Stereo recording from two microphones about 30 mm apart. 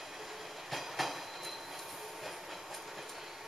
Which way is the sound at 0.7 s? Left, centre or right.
Centre.